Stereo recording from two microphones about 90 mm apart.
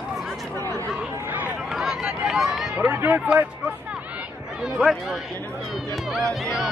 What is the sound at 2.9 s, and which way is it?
Speech, 20° right (ahead or behind).